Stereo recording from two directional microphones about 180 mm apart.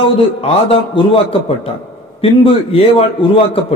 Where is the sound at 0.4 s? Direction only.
30° left (ahead or behind).